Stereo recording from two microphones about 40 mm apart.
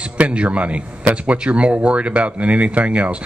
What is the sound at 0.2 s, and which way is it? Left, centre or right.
A man's voice, right.